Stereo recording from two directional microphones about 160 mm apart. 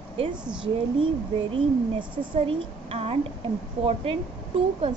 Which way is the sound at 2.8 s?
40° right (ahead or behind).